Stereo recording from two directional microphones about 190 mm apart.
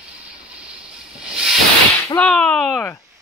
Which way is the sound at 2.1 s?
5° left (ahead or behind).